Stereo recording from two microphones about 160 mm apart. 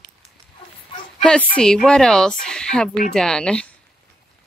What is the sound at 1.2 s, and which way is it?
Speech, 10° left (ahead or behind).